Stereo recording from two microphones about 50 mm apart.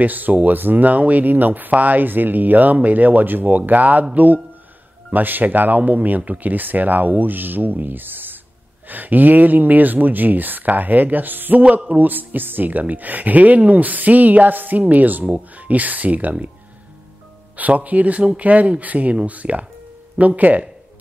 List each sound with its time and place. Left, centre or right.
0.0 s speech: right
17.6 s speech: right